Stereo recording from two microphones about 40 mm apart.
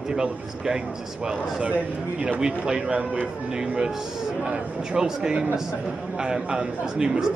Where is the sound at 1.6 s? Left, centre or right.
Right.